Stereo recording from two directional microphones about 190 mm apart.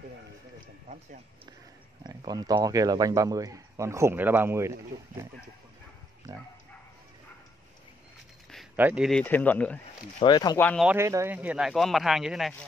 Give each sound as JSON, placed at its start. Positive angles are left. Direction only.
{"t": 2.0, "sound": "speech", "side_deg": -20}
{"t": 8.7, "sound": "speech", "side_deg": -5}
{"t": 9.2, "sound": "speech", "side_deg": 10}
{"t": 10.2, "sound": "speech", "side_deg": 20}
{"t": 10.6, "sound": "speech", "side_deg": 5}
{"t": 10.9, "sound": "speech", "side_deg": -15}